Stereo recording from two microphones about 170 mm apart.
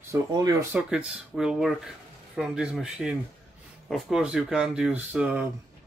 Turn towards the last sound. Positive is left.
turn(degrees=-10)  # may be behind; listen again after turning